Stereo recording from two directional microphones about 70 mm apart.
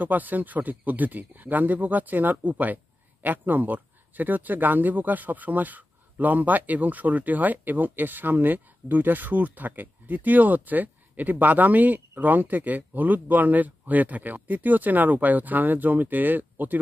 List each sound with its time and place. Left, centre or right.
0.0 s speech: right